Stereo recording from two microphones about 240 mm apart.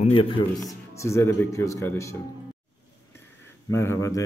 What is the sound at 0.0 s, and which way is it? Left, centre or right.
Speech, left.